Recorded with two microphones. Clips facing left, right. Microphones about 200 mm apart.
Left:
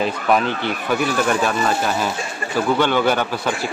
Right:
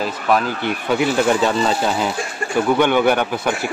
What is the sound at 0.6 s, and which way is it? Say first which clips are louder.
Speech: right 2 dB; 20° right (ahead or behind).